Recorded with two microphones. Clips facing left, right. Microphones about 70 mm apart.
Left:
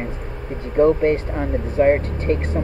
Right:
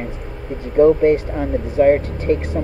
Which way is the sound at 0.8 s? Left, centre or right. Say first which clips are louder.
Right 3 dB; left.